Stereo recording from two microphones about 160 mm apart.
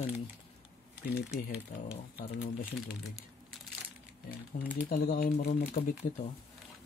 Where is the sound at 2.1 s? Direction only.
85° left.